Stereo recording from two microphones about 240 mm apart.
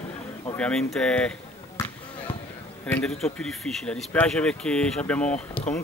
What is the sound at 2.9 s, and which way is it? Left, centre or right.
Speech, centre.